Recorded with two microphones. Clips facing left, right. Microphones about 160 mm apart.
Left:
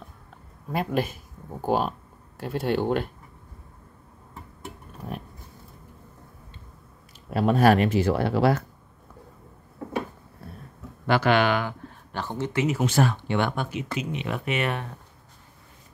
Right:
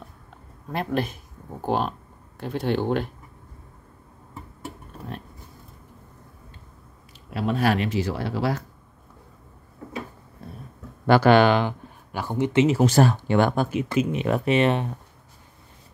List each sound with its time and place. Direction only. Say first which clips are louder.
0.7 s speech: even; 5° left (ahead or behind)
7.2 s speech: left 4 dB; 45° left (ahead or behind)
11.1 s speech: right 5 dB; 35° right (ahead or behind)
12.1 s speech: right 5 dB; 10° right (ahead or behind)
12.6 s speech: right 2 dB; 35° right (ahead or behind)